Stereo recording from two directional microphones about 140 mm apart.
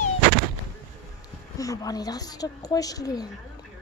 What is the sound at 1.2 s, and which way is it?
A woman's voice, 25° left (ahead or behind).